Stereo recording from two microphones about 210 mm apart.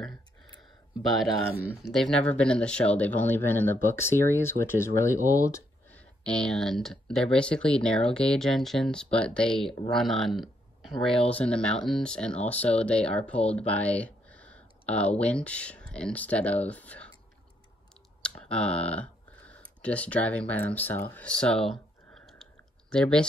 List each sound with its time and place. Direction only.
1.9 s speech: centre (ahead or behind)
18.5 s a sound: 5° left (ahead or behind)
19.8 s speech: 5° left (ahead or behind)